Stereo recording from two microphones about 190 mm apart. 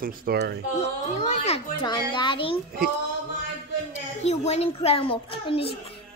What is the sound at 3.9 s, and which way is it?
A child's voice, 35° left (ahead or behind).